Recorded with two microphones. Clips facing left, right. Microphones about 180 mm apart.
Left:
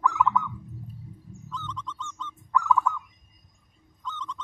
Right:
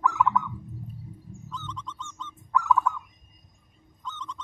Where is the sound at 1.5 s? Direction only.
10° right (ahead or behind).